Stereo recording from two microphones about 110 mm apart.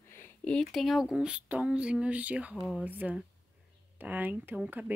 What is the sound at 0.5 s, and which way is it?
Speech, centre (ahead or behind).